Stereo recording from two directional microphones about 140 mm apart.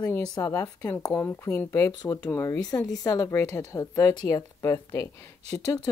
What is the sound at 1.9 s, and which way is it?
Speech, 30° left (ahead or behind).